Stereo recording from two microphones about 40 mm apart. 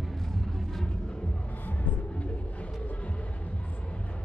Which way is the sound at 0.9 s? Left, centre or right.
Left.